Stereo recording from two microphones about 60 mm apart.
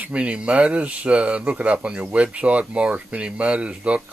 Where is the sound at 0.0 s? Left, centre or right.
Right.